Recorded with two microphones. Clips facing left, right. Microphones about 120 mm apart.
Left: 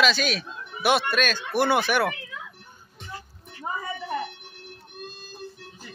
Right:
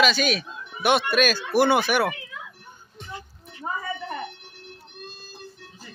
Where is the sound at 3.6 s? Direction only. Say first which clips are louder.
Right 1 dB; 10° right (ahead or behind).